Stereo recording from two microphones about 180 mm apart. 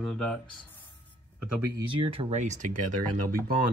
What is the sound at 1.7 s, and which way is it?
Speech, 30° right (ahead or behind).